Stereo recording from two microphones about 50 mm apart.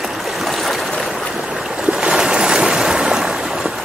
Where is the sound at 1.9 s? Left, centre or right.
Centre.